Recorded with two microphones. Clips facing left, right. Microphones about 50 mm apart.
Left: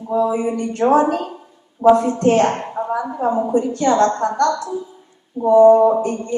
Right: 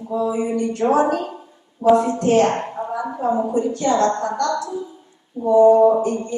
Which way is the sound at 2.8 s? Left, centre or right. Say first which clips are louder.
Left 4 dB; left.